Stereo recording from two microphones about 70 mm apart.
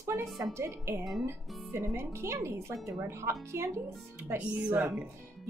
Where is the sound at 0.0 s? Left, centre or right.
Right.